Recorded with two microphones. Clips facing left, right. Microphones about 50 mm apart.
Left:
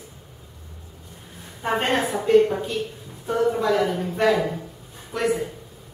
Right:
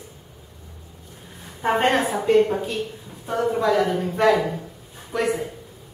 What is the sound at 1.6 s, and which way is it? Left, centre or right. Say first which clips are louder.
A woman's voice: right 3 dB; centre.